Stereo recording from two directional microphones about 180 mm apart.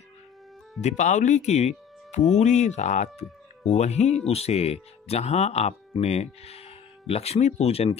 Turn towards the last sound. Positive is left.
turn(degrees=35)  # may be behind; listen again after turning